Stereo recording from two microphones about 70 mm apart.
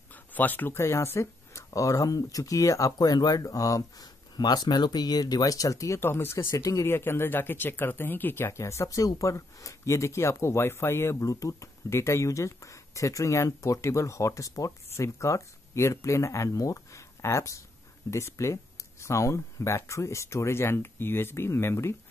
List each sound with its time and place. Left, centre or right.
0.1 s speech: left
4.4 s speech: left
5.9 s speech: left
6.9 s speech: left
8.5 s speech: left